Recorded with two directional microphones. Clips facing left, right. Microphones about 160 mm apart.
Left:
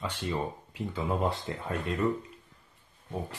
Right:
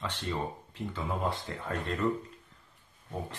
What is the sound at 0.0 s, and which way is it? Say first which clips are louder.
Speech: left 2 dB; 10° left (ahead or behind).